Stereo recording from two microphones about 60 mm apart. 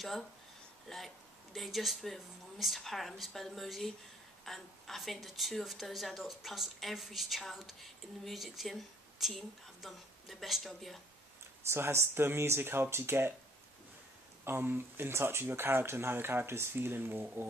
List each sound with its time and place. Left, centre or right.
0.8 s a woman's voice: centre
11.7 s speech: right
14.4 s speech: right